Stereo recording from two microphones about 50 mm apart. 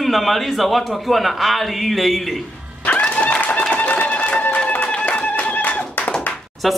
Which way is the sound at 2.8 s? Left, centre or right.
Left.